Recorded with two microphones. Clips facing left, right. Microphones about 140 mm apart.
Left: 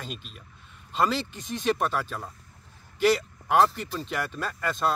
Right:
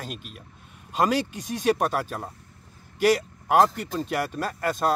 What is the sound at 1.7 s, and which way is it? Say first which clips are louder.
Speech: right 2 dB; 45° right (ahead or behind).